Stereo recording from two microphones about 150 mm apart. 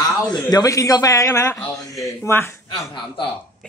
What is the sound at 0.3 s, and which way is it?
A man's voice, 25° left (ahead or behind).